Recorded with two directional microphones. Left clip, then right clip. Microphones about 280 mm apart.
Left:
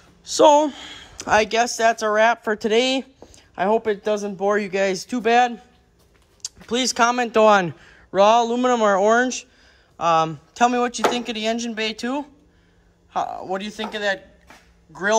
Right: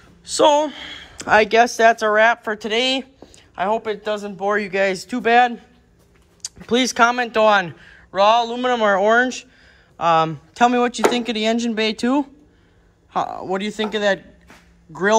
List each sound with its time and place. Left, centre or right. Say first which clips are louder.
0.2 s speech: left 1 dB; left